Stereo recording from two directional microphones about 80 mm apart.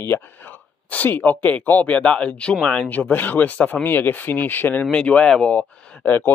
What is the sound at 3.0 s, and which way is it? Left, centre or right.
Speech, left.